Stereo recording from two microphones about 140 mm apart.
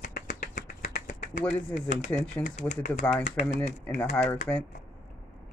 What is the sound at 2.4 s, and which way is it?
Speech, 60° left (ahead or behind).